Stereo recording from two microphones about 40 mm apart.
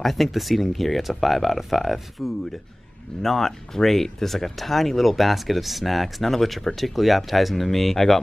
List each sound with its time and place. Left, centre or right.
0.0 s speech: centre